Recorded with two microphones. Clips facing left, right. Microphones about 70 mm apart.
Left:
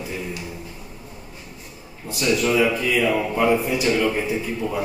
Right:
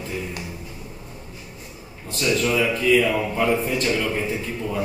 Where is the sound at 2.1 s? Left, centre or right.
Centre.